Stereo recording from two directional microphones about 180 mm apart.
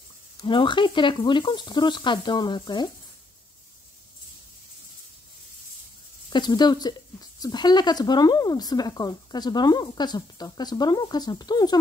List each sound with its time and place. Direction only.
0.4 s speech: 25° left (ahead or behind)
6.3 s speech: 25° left (ahead or behind)